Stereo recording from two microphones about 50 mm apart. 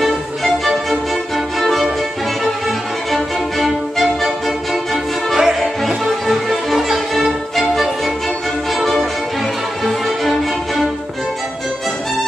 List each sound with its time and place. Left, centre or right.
0.0 s music: centre
3.1 s violin: centre
5.3 s music: centre